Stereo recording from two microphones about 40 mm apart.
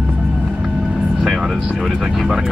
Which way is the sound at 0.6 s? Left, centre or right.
Centre.